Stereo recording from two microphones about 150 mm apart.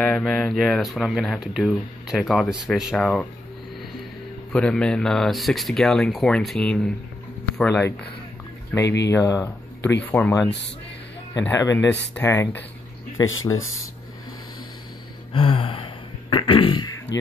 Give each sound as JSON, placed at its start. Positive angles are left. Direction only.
{"t": 0.0, "sound": "speech", "side_deg": 5}
{"t": 3.0, "sound": "speech", "side_deg": 10}
{"t": 4.5, "sound": "speech", "side_deg": 5}
{"t": 8.7, "sound": "speech", "side_deg": 20}
{"t": 10.0, "sound": "speech", "side_deg": 10}
{"t": 11.4, "sound": "speech", "side_deg": 20}
{"t": 15.3, "sound": "a sound", "side_deg": 40}